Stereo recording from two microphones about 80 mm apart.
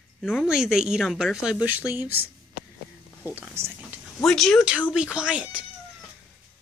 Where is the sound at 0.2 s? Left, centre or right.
Centre.